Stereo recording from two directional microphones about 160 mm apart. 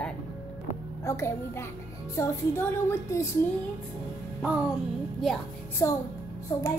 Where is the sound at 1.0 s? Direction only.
15° left (ahead or behind).